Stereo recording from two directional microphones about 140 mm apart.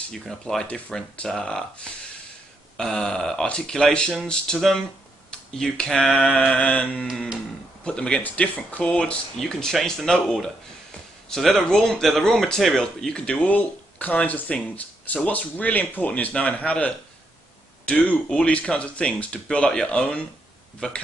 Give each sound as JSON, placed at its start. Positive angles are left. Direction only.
{"t": 0.1, "sound": "speech", "side_deg": 5}
{"t": 2.8, "sound": "speech", "side_deg": 5}
{"t": 7.1, "sound": "speech", "side_deg": -5}